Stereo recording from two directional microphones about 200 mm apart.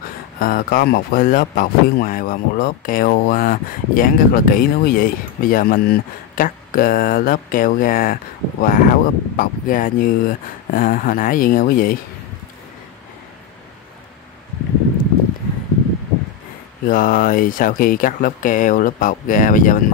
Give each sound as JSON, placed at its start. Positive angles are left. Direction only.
{"t": 0.4, "sound": "speech", "side_deg": 45}
{"t": 16.8, "sound": "speech", "side_deg": 45}